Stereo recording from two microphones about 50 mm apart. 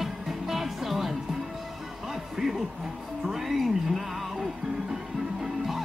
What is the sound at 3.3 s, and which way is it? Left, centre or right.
Music, centre.